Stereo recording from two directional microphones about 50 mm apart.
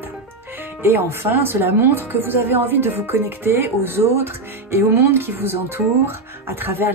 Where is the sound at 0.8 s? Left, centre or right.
Right.